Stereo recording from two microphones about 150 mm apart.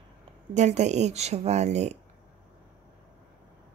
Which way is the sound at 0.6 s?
50° right (ahead or behind).